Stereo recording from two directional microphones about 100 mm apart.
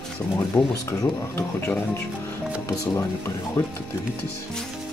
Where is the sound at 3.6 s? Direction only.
25° left (ahead or behind).